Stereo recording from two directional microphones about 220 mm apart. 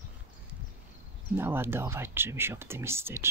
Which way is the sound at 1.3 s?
10° right (ahead or behind).